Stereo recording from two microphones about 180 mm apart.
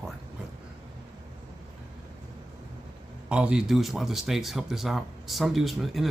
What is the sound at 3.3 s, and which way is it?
Speech, 5° right (ahead or behind).